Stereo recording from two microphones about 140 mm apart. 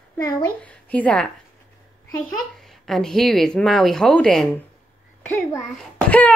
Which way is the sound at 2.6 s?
Centre (ahead or behind).